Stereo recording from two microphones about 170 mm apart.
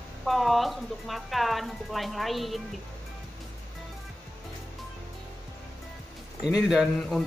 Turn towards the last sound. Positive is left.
turn(degrees=-5)  # may be behind; listen again after turning